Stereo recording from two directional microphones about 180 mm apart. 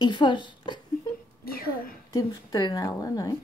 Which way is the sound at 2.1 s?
20° left (ahead or behind).